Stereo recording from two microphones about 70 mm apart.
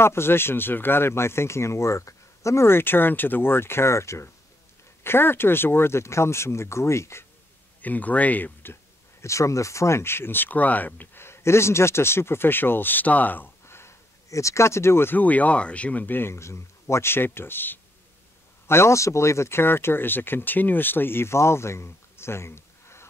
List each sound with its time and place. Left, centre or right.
0.0 s speech: left
7.8 s speech: left
9.2 s speech: left
11.2 s speech: left